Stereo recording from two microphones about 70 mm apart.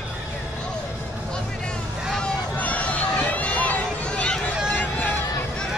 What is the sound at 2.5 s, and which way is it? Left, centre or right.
Run, left.